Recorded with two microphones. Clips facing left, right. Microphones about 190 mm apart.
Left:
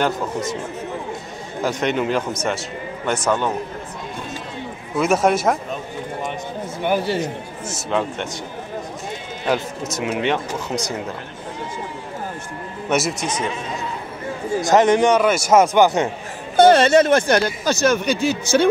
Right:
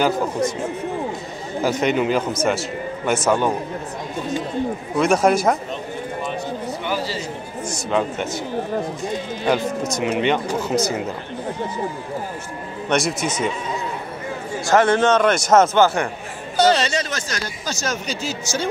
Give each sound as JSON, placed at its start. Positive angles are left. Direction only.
{"t": 0.0, "sound": "speech", "side_deg": 0}
{"t": 1.6, "sound": "a man's voice", "side_deg": 0}
{"t": 4.9, "sound": "speech", "side_deg": 5}
{"t": 6.8, "sound": "speech", "side_deg": 55}
{"t": 7.6, "sound": "speech", "side_deg": 0}
{"t": 9.5, "sound": "speech", "side_deg": 0}
{"t": 12.8, "sound": "speech", "side_deg": 5}
{"t": 14.6, "sound": "a man's voice", "side_deg": 20}
{"t": 16.5, "sound": "speech", "side_deg": 55}